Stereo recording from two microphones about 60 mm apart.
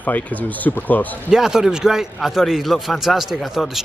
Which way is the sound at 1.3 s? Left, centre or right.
Centre.